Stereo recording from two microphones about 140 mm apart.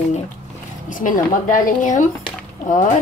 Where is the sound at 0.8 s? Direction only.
70° left (ahead or behind).